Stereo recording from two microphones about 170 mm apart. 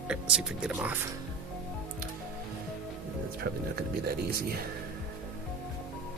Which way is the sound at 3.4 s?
70° right (ahead or behind).